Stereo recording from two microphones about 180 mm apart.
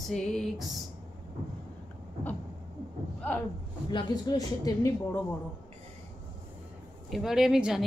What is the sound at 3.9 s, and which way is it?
Speech, 25° left (ahead or behind).